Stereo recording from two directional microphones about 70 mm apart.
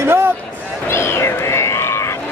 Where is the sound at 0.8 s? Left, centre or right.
Left.